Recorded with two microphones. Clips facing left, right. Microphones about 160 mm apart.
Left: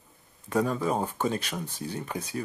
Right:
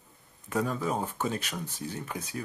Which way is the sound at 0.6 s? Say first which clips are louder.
Left 3 dB; 35° left (ahead or behind).